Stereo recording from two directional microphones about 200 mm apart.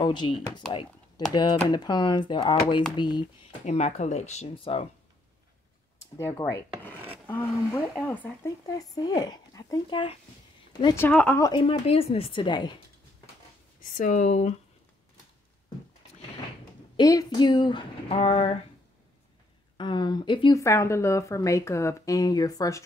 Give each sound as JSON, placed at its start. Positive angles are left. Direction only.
{"t": 0.0, "sound": "speech", "side_deg": 20}
{"t": 0.3, "sound": "speech", "side_deg": 5}
{"t": 1.3, "sound": "speech", "side_deg": 20}
{"t": 3.6, "sound": "speech", "side_deg": 35}
{"t": 6.1, "sound": "speech", "side_deg": 15}
{"t": 11.0, "sound": "speech", "side_deg": 5}
{"t": 11.6, "sound": "speech", "side_deg": 30}
{"t": 13.9, "sound": "speech", "side_deg": 40}
{"t": 16.9, "sound": "speech", "side_deg": 20}
{"t": 19.8, "sound": "speech", "side_deg": 20}